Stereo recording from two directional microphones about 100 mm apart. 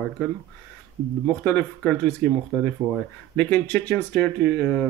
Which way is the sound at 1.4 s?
15° left (ahead or behind).